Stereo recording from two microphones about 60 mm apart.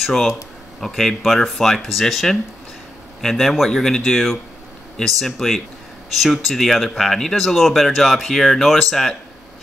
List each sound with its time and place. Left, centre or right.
0.7 s speech: centre